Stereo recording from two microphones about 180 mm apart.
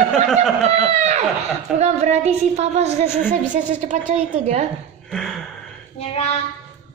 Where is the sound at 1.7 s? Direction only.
35° right (ahead or behind).